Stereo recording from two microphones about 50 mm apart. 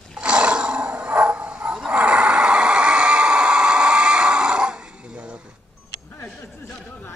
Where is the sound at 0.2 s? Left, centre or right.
Right.